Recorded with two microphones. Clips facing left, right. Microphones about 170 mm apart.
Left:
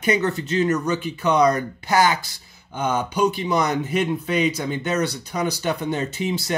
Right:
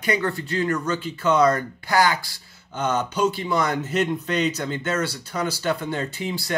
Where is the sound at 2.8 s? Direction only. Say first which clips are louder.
Left 1 dB; 10° left (ahead or behind).